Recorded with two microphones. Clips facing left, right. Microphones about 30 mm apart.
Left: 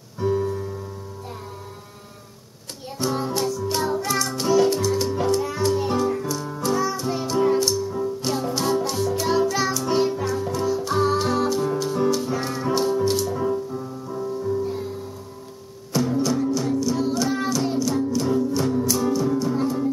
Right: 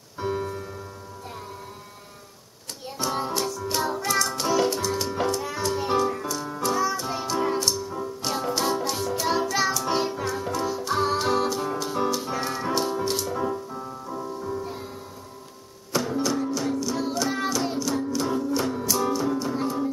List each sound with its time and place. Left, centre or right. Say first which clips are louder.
0.2 s keyboard: left 5 dB; centre
3.1 s music: left 3 dB; centre
15.9 s music: left 3 dB; centre